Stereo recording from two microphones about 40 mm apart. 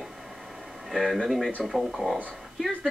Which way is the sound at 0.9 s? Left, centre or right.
Centre.